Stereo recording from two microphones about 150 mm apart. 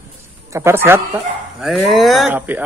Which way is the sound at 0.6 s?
15° right (ahead or behind).